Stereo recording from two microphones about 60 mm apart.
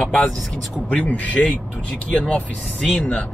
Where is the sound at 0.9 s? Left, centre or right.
Left.